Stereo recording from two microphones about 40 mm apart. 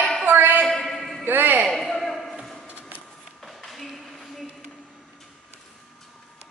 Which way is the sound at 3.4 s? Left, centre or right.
Centre.